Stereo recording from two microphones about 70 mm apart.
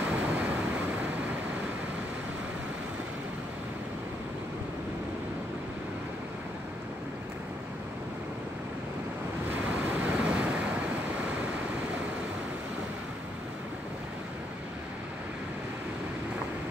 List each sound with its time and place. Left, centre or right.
0.1 s waves: right
9.6 s vehicle: centre